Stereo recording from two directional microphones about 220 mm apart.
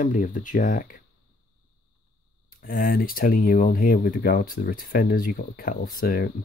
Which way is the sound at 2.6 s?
40° left (ahead or behind).